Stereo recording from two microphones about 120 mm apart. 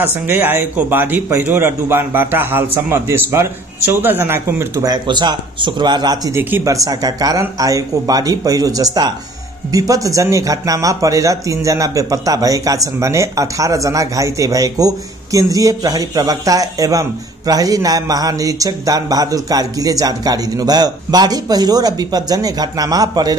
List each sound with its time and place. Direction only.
0.0 s a man's voice: 15° right (ahead or behind)
4.8 s speech: 35° right (ahead or behind)
6.3 s speech: 25° right (ahead or behind)